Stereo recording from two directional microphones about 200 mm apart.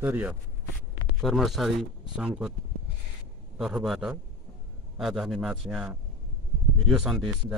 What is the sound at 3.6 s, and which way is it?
A man's voice, centre (ahead or behind).